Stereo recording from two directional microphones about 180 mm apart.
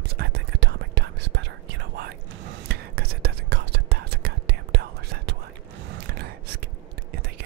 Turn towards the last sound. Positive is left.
turn(degrees=-60)  # may be behind; listen again after turning